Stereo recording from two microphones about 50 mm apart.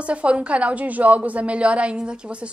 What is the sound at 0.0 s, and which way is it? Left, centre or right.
A woman's voice, right.